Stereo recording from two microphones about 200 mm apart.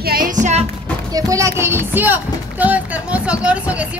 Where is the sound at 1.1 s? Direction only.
15° right (ahead or behind).